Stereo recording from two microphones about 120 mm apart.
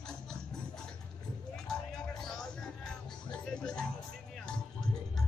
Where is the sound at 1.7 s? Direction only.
5° left (ahead or behind).